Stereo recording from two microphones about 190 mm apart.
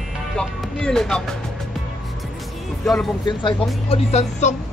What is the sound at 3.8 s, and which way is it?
Speech, 35° left (ahead or behind).